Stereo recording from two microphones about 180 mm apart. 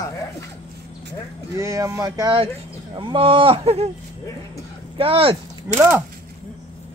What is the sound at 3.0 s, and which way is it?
Speech, 30° right (ahead or behind).